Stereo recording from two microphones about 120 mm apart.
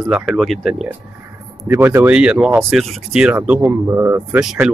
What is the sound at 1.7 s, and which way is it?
Speech, 20° right (ahead or behind).